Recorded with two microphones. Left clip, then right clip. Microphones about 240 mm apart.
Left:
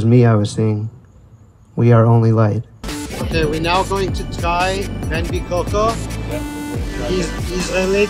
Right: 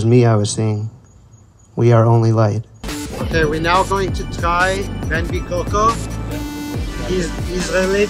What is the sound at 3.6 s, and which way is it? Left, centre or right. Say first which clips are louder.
Speech: right 2 dB; centre.